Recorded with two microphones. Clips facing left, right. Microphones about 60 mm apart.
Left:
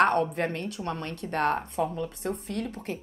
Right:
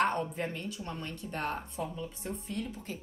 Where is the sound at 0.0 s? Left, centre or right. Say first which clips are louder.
Left 7 dB; left.